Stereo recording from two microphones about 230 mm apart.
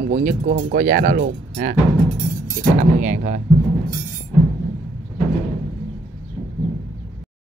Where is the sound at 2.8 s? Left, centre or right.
Right.